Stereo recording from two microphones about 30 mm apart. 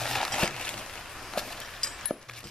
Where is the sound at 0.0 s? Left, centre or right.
Centre.